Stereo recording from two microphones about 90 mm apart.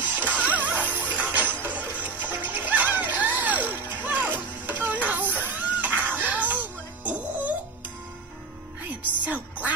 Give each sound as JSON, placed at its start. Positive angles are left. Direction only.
{"t": 0.0, "sound": "music", "side_deg": -15}
{"t": 9.2, "sound": "music", "side_deg": -20}